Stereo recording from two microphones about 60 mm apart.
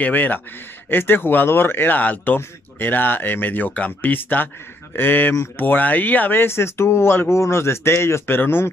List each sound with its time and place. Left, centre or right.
0.0 s speech: left